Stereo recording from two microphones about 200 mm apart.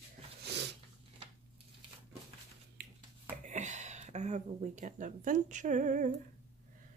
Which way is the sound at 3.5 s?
35° right (ahead or behind).